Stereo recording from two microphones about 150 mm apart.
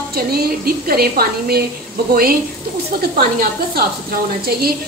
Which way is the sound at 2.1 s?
80° right.